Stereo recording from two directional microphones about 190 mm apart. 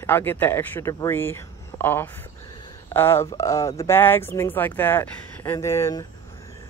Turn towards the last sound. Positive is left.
turn(degrees=15)  # may be behind; listen again after turning